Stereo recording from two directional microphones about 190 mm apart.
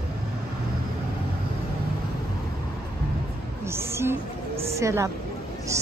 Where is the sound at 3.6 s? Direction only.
15° right (ahead or behind).